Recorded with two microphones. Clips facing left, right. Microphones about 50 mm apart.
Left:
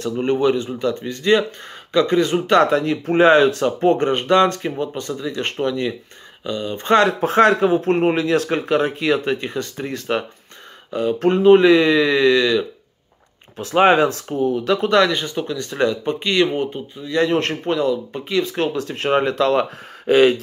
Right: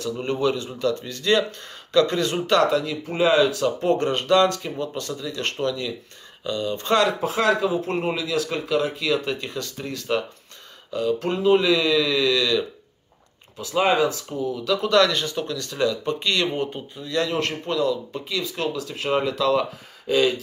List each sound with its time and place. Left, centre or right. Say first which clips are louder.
0.0 s speech: left 5 dB; left
2.4 s speech: left 4 dB; left
7.2 s speech: left 7 dB; left
13.6 s speech: left 6 dB; left
14.4 s speech: left 5 dB; left; by 16.6 s centre
16.7 s speech: left 4 dB; centre
17.1 s speech: left 5 dB; left